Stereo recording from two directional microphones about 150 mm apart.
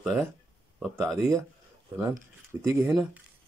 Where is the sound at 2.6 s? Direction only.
20° right (ahead or behind).